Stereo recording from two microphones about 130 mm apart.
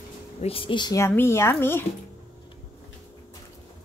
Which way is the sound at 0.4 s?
45° left (ahead or behind).